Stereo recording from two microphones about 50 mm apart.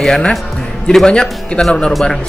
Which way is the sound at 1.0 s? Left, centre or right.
Centre.